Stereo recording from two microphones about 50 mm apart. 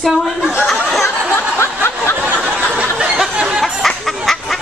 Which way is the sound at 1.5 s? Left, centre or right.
Left.